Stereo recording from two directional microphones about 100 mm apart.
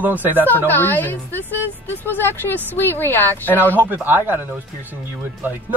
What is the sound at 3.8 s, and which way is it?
Speech, 20° right (ahead or behind).